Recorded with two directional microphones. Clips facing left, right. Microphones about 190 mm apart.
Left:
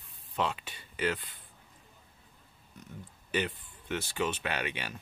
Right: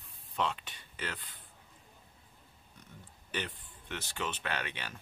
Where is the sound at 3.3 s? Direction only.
10° left (ahead or behind).